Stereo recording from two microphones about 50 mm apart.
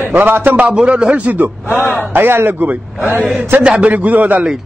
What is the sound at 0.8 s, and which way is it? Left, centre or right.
Speech, right.